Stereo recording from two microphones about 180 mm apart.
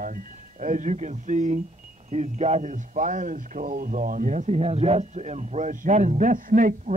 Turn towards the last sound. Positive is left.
turn(degrees=-50)  # may be behind; listen again after turning